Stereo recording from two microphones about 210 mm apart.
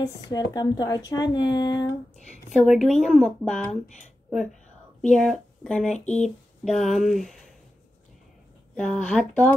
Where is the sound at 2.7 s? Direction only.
Centre (ahead or behind).